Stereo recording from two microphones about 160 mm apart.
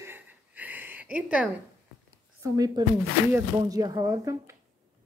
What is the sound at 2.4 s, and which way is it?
Speech, 25° right (ahead or behind).